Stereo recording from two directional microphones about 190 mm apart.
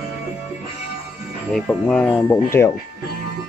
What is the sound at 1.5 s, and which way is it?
Speech, 5° left (ahead or behind).